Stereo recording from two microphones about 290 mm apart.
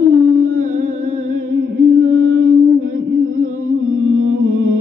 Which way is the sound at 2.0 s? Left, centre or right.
Right.